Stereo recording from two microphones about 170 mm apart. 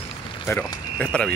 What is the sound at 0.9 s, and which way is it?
Speech, 5° left (ahead or behind).